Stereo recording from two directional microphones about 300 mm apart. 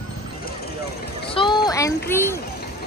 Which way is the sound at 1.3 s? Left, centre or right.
Centre.